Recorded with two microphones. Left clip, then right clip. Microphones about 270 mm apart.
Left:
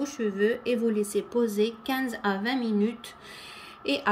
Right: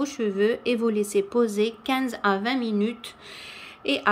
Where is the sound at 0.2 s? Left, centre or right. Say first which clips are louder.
Right 2 dB; centre.